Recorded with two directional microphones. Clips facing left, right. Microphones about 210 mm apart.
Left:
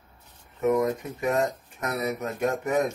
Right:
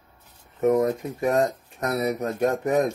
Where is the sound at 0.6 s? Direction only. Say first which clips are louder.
Right 3 dB; 35° right (ahead or behind).